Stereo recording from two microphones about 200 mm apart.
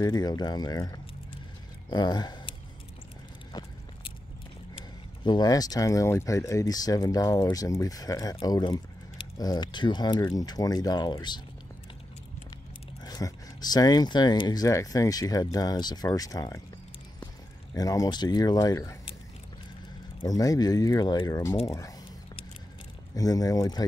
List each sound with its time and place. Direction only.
0.0 s speech: 20° left (ahead or behind)
3.5 s vehicle: 20° left (ahead or behind)
5.2 s speech: 20° left (ahead or behind)
13.0 s speech: 20° left (ahead or behind)
17.7 s speech: 15° left (ahead or behind)
20.2 s speech: 15° left (ahead or behind)
23.1 s speech: 15° left (ahead or behind)